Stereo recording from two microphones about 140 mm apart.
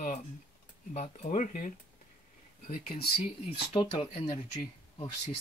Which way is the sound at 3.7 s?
35° left (ahead or behind).